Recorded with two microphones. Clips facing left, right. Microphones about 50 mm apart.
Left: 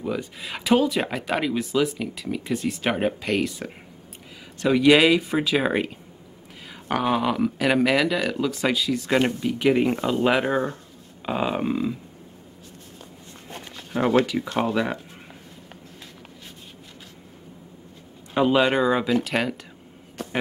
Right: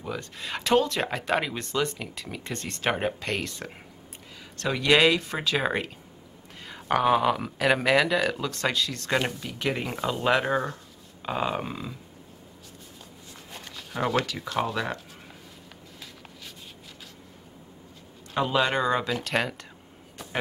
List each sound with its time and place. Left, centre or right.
0.0 s speech: centre
13.5 s a sound: left
14.2 s speech: centre
18.3 s speech: centre